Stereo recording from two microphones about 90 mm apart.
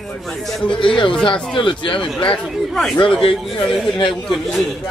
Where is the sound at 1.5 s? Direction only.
65° left (ahead or behind).